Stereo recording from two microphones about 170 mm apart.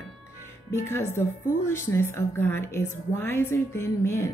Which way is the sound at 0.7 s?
15° left (ahead or behind).